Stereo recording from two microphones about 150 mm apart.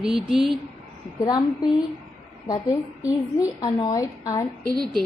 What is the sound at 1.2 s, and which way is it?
A woman's voice, 25° left (ahead or behind).